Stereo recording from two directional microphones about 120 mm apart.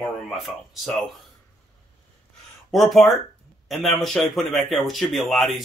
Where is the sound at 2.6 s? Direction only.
Centre (ahead or behind).